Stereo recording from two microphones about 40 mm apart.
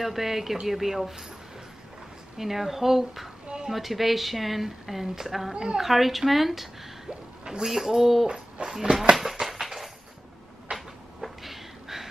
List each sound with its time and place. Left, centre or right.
0.0 s a woman's voice: centre
2.3 s speech: centre
3.4 s a sound: centre
3.7 s a woman's voice: centre
5.5 s speech: centre
5.9 s a woman's voice: centre
8.6 s speech: right
9.1 s a sound: centre
11.1 s a sound: centre